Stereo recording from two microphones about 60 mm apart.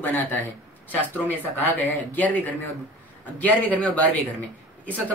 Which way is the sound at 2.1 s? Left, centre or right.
Left.